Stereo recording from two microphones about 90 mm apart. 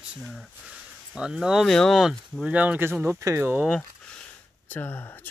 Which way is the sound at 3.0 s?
30° right (ahead or behind).